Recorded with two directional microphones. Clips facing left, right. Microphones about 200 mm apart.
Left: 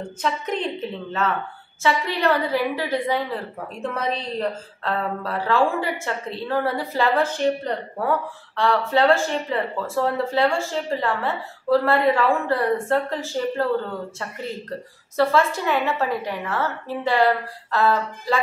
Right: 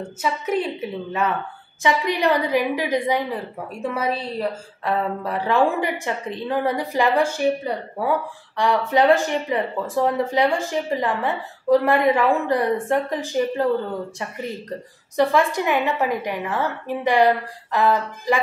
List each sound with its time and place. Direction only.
0.2 s a woman's voice: 5° right (ahead or behind)
15.1 s a woman's voice: 15° right (ahead or behind)